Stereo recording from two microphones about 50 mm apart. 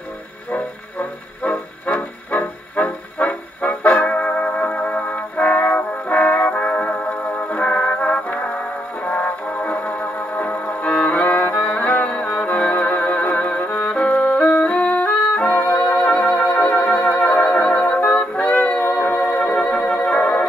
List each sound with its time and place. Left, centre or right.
0.5 s music: left
5.0 s brass instrument: left
10.8 s music: left
17.4 s music: centre; by 19.4 s left
19.4 s music: centre